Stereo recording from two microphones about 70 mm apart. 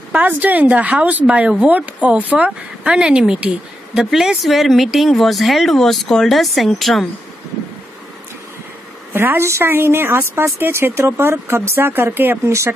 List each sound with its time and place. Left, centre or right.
0.1 s a woman's voice: right; by 7.1 s centre
9.1 s speech: right
12.4 s speech: right